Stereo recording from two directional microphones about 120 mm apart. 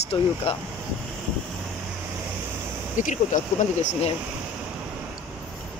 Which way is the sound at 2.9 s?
90° left.